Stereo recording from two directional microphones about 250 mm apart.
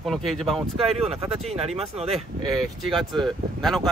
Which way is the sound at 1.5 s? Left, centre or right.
Right.